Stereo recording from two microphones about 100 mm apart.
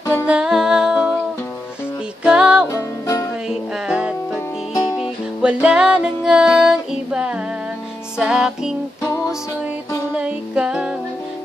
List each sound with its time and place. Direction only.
0.3 s music: 5° right (ahead or behind)
2.2 s music: 10° right (ahead or behind)
2.7 s music: 30° left (ahead or behind)
3.4 s music: 5° right (ahead or behind)
10.1 s music: 10° right (ahead or behind)